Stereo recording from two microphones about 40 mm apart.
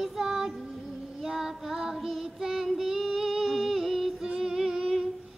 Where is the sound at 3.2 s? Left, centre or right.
Centre.